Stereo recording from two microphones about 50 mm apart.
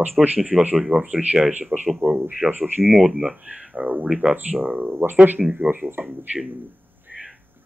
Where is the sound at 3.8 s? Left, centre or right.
Right.